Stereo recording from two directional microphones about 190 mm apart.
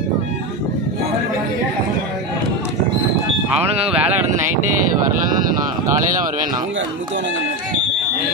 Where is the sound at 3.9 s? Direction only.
5° right (ahead or behind).